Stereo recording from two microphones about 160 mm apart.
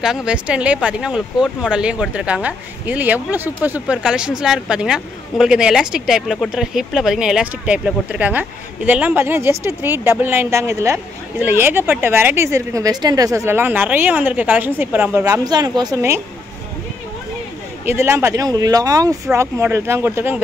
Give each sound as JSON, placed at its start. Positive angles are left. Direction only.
{"t": 0.0, "sound": "speech", "side_deg": -5}
{"t": 15.2, "sound": "speech", "side_deg": -25}
{"t": 17.8, "sound": "speech", "side_deg": -15}